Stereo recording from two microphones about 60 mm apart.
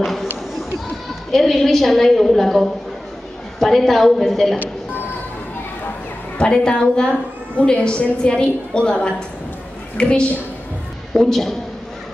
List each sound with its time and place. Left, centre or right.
0.0 s a sound: centre
1.3 s a woman's voice: centre
6.3 s a woman's voice: centre